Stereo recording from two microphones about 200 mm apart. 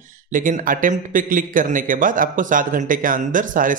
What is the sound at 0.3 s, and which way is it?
A man's voice, 40° right (ahead or behind).